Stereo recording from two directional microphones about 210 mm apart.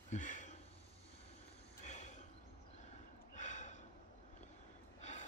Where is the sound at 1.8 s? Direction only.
35° left (ahead or behind).